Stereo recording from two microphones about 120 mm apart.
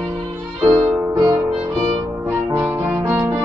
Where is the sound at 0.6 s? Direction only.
50° right (ahead or behind).